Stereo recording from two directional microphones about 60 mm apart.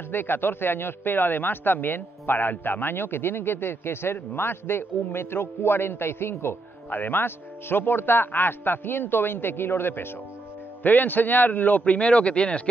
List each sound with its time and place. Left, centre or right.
0.1 s a man's voice: left; by 12.6 s centre